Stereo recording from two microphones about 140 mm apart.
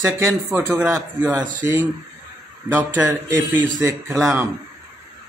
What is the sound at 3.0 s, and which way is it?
Speech, 25° right (ahead or behind).